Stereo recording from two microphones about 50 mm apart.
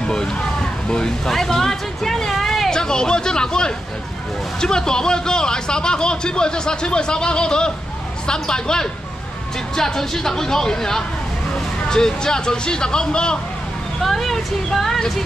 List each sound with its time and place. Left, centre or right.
0.0 s a man's voice: centre
14.0 s speech: centre